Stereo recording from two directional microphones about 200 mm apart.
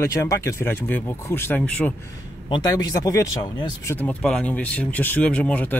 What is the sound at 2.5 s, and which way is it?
Speech, 20° left (ahead or behind).